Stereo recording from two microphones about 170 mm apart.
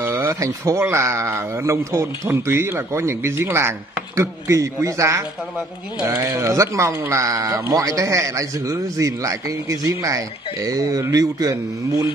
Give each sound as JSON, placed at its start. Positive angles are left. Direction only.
{"t": 0.0, "sound": "speech", "side_deg": -10}